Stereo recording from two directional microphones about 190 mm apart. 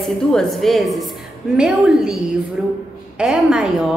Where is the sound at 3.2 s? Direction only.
5° right (ahead or behind).